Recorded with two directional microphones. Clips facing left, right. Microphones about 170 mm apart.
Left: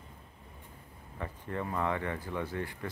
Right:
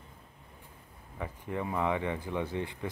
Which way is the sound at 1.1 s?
15° right (ahead or behind).